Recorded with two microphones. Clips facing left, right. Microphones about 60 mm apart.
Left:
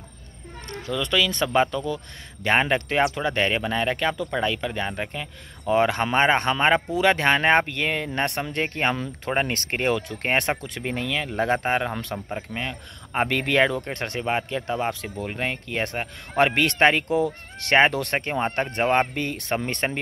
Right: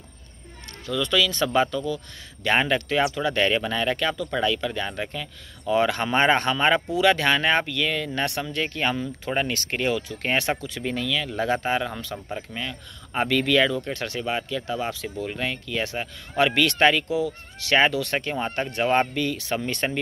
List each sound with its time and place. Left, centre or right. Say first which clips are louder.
0.8 s speech: even; left
3.3 s speech: right 2 dB; centre; by 8.9 s left
8.9 s speech: right 1 dB; left
9.3 s speech: left 2 dB; left
9.9 s speech: left 1 dB; left
10.2 s speech: left 1 dB; left
17.1 s speech: left 3 dB; left